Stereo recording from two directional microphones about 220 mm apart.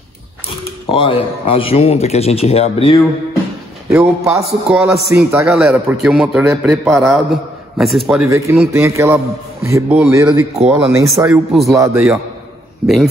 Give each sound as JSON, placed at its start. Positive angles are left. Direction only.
{"t": 0.8, "sound": "speech", "side_deg": 25}
{"t": 3.9, "sound": "a man's voice", "side_deg": -5}
{"t": 8.5, "sound": "a man's voice", "side_deg": -10}
{"t": 11.7, "sound": "a man's voice", "side_deg": -15}
{"t": 12.8, "sound": "a man's voice", "side_deg": 0}